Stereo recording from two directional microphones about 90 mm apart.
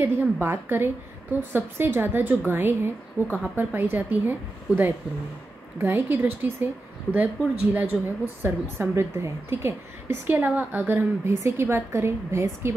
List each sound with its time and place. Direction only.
0.2 s a woman's voice: 20° right (ahead or behind)